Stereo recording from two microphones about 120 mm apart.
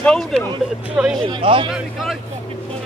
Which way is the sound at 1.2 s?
45° right (ahead or behind).